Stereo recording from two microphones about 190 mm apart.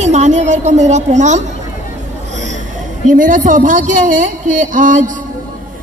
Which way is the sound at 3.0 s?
45° right (ahead or behind).